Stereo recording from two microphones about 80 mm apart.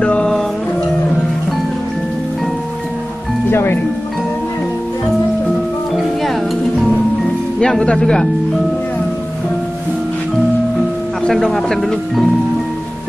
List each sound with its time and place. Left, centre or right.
0.0 s music: centre
3.4 s music: left
7.6 s speech: centre
11.2 s speech: centre